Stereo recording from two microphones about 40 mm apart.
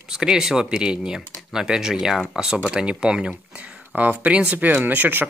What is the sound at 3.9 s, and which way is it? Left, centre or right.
Speech, right.